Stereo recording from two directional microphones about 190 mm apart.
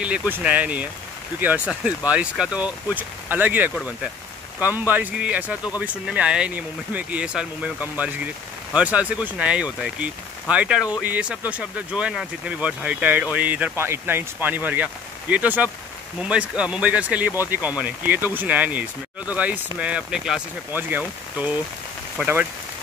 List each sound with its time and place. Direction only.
0.0 s speech: 5° right (ahead or behind)